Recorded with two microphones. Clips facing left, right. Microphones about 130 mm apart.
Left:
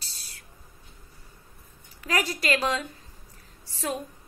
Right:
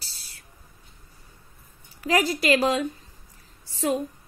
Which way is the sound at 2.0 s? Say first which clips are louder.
Right 5 dB; 30° right (ahead or behind).